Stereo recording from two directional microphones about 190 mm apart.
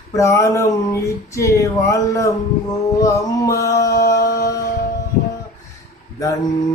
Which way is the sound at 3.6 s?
15° left (ahead or behind).